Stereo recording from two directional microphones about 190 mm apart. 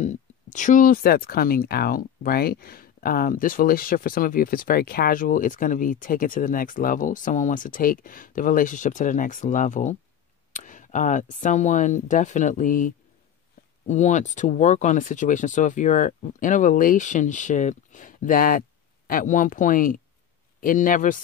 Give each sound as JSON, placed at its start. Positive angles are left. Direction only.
{"t": 0.0, "sound": "speech", "side_deg": 40}